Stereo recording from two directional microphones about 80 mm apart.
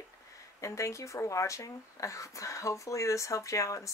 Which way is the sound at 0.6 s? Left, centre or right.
Left.